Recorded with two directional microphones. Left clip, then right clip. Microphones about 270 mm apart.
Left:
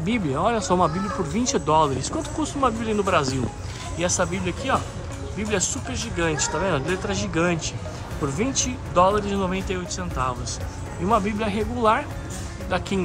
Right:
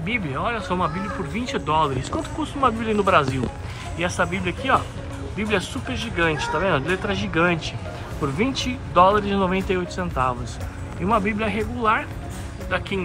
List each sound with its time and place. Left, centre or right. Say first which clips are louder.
0.0 s speech: left 2 dB; centre